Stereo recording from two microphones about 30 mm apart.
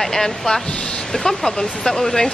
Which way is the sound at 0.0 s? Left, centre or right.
Centre.